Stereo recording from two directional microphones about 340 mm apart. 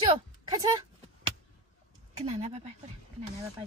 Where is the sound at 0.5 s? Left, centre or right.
Centre.